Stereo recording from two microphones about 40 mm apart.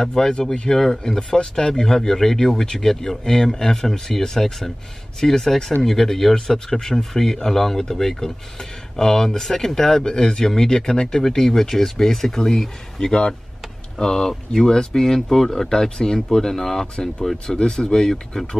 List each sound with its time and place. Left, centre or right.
0.0 s speech: centre